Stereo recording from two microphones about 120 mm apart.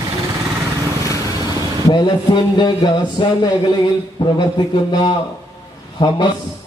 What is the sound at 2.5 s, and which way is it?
Speech, 40° left (ahead or behind).